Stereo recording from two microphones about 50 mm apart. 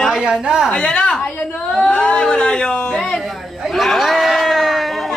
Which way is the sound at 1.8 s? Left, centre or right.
Centre.